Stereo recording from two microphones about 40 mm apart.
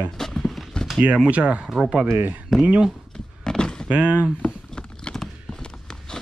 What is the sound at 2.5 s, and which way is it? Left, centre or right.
Speech, centre.